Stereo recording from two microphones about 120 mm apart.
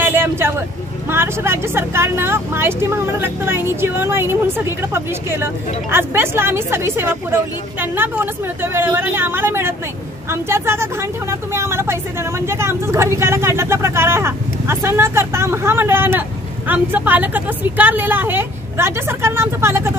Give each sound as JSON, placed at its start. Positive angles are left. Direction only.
{"t": 0.0, "sound": "vehicle", "side_deg": -20}
{"t": 1.1, "sound": "a woman's voice", "side_deg": -20}